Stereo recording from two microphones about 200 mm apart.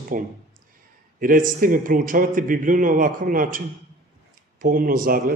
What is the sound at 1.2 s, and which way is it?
A man's voice, 45° right (ahead or behind).